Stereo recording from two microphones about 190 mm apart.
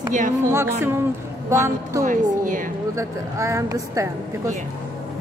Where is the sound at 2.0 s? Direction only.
45° right (ahead or behind).